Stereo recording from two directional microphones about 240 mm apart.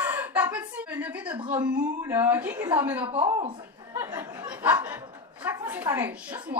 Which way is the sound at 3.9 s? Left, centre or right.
Centre.